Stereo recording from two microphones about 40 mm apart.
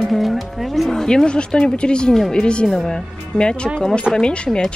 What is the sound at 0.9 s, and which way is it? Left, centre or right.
Speech, centre.